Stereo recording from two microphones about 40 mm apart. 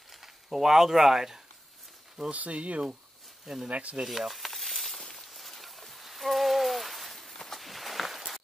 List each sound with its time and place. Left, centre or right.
0.2 s speech: centre
2.3 s speech: right
4.1 s a sound: centre